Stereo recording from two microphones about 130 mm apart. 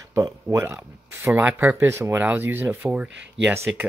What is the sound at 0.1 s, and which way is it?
Speech, 25° right (ahead or behind).